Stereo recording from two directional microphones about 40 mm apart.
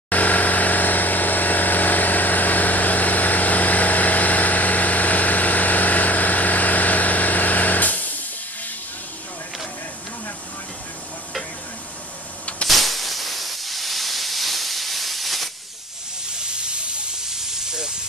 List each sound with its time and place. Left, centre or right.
0.1 s vehicle: left
12.6 s hiss: centre
16.3 s hiss: right
17.3 s steam: centre